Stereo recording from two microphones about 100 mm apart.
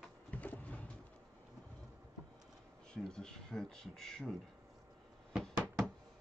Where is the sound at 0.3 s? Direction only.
15° left (ahead or behind).